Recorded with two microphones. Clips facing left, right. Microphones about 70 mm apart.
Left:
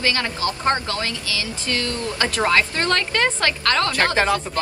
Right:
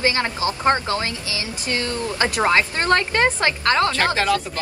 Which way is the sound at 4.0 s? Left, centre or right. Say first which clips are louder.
Even; left.